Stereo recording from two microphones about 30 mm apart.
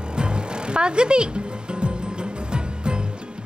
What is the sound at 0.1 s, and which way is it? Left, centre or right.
Music, right.